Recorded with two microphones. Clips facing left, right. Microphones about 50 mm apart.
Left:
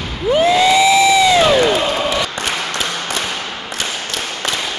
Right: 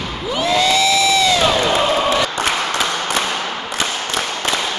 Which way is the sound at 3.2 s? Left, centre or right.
Centre.